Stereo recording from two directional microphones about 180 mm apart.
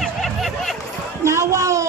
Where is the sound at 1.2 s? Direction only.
15° right (ahead or behind).